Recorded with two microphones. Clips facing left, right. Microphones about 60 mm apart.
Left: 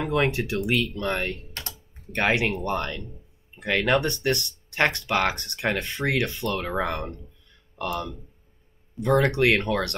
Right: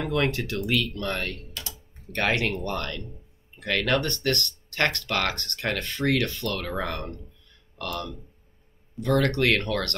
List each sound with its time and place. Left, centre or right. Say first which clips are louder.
0.0 s speech: left 2 dB; centre
1.5 s typing: left 1 dB; left
2.1 s speech: left 2 dB; centre